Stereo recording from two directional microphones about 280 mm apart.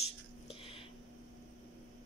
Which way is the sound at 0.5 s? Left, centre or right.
Centre.